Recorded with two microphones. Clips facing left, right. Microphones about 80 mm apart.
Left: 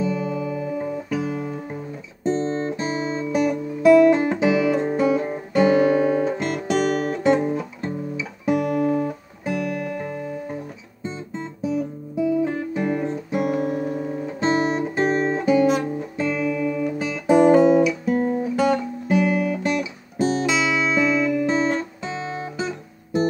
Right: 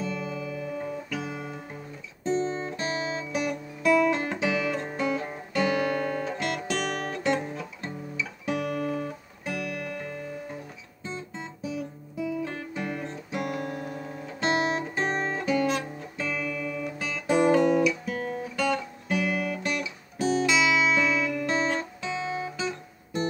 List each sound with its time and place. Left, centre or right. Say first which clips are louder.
0.0 s guitar: left 8 dB; centre
7.3 s music: left 9 dB; centre
7.8 s music: left 7 dB; centre
9.5 s music: left 7 dB; left
11.6 s guitar: left 10 dB; centre
13.6 s music: left 9 dB; centre
14.7 s guitar: left 7 dB; centre
18.1 s music: left 10 dB; centre
18.6 s guitar: left 5 dB; centre